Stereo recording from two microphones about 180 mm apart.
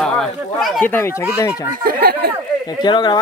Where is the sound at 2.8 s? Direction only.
25° left (ahead or behind).